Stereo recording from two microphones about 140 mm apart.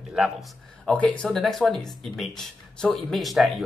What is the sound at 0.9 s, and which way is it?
Speech, 10° left (ahead or behind).